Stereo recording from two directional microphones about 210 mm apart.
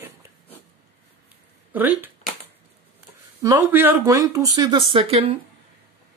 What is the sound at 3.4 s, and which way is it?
Speech, 10° right (ahead or behind).